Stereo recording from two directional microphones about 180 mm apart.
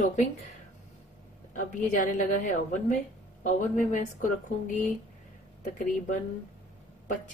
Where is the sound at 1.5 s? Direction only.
45° left (ahead or behind).